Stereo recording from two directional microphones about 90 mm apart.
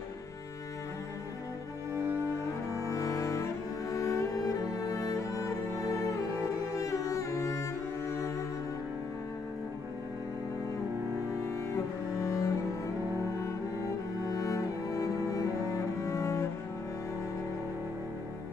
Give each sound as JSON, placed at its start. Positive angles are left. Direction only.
{"t": 2.8, "sound": "cello", "side_deg": 35}
{"t": 4.7, "sound": "music", "side_deg": 40}
{"t": 6.8, "sound": "music", "side_deg": 35}
{"t": 11.7, "sound": "cello", "side_deg": 35}
{"t": 14.3, "sound": "cello", "side_deg": 40}